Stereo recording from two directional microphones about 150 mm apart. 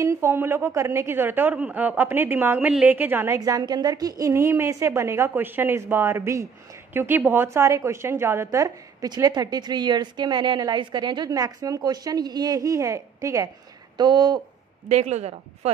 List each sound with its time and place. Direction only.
0.0 s a woman's voice: 15° right (ahead or behind)
14.9 s a woman's voice: 45° right (ahead or behind)